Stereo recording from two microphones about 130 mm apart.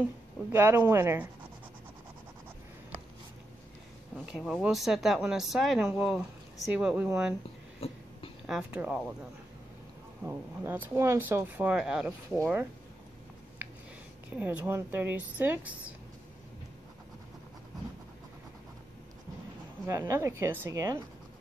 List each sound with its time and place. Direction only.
0.5 s speech: 15° right (ahead or behind)
4.3 s speech: centre (ahead or behind)
8.5 s speech: 5° right (ahead or behind)
10.2 s speech: 15° right (ahead or behind)
14.3 s speech: 10° right (ahead or behind)
19.9 s speech: 20° right (ahead or behind)